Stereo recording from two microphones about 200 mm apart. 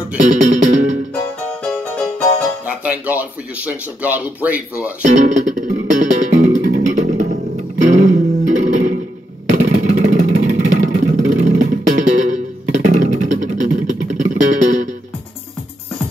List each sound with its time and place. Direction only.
0.2 s music: 40° right (ahead or behind)
1.6 s music: 5° left (ahead or behind)
2.6 s speech: 5° right (ahead or behind)
5.0 s music: 35° right (ahead or behind)
9.5 s vehicle: 40° right (ahead or behind)
10.7 s music: 40° right (ahead or behind)